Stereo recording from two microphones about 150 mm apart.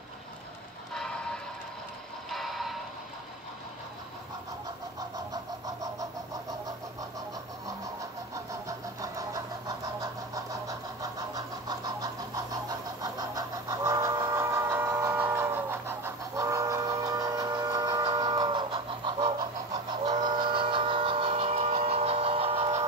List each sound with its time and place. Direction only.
0.9 s music: 5° left (ahead or behind)
5.3 s vehicle: 25° right (ahead or behind)
8.5 s vehicle: 20° right (ahead or behind)
14.2 s printer: 20° right (ahead or behind); by 22.8 s 40° right (ahead or behind)